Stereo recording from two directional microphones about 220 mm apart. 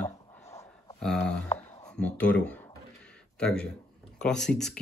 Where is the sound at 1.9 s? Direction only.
5° left (ahead or behind).